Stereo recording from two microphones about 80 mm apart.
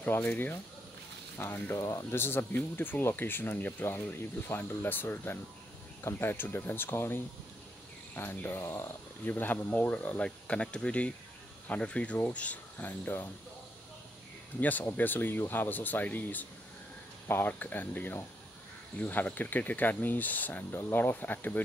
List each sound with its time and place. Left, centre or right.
0.0 s speech: left
1.8 s speech: left
8.2 s speech: left
9.3 s speech: left
14.6 s speech: left